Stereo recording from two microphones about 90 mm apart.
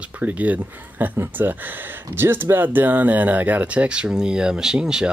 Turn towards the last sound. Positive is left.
turn(degrees=-10)  # may be behind; listen again after turning